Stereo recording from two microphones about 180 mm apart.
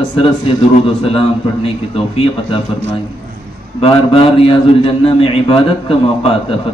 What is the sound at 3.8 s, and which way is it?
A man's voice, 35° left (ahead or behind).